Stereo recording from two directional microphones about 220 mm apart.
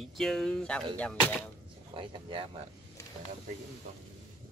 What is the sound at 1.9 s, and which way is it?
Speech, 25° right (ahead or behind).